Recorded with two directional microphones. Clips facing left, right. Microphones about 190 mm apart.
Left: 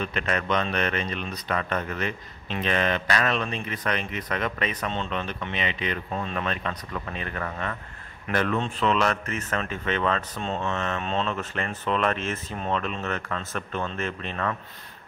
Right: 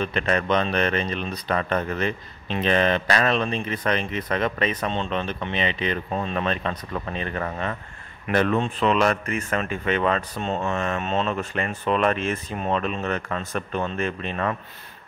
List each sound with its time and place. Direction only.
0.0 s a man's voice: 30° right (ahead or behind); by 14.5 s 15° right (ahead or behind)